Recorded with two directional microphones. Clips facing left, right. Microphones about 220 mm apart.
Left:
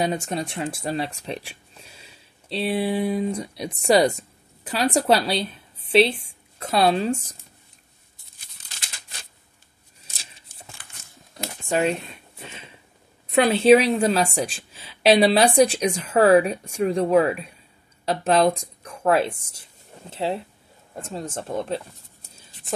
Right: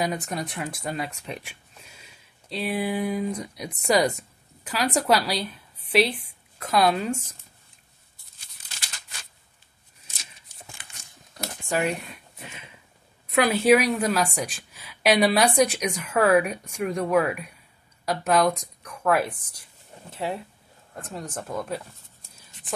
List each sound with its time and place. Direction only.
0.0 s speech: 25° left (ahead or behind)
10.5 s crumpling: 50° left (ahead or behind)
11.3 s a sound: 25° left (ahead or behind)
13.3 s a woman's voice: 25° left (ahead or behind)